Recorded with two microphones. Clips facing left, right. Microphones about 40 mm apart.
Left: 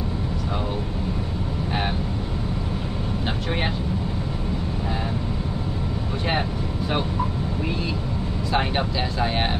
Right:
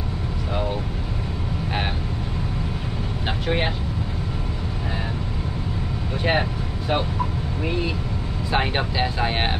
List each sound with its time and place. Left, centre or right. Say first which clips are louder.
8.5 s speech: right 1 dB; centre